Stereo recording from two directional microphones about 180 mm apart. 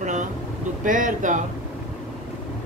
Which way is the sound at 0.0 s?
45° right (ahead or behind).